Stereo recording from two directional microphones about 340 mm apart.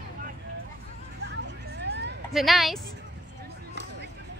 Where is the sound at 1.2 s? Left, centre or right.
Right.